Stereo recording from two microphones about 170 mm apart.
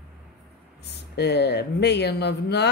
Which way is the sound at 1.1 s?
75° left (ahead or behind).